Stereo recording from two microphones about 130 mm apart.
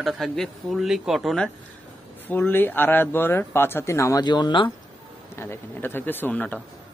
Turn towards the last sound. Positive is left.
turn(degrees=10)  # may be behind; listen again after turning